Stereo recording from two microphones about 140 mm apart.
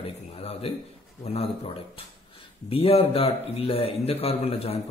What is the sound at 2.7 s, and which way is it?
A man's voice, 45° left (ahead or behind).